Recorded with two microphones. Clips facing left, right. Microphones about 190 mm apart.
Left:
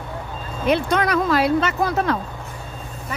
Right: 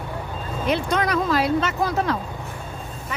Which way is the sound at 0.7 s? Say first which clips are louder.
Left 3 dB; 65° left (ahead or behind).